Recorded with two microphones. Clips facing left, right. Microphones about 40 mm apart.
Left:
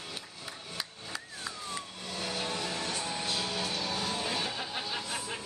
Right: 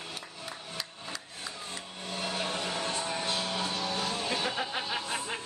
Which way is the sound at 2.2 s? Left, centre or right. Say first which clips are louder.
Right 2 dB; right.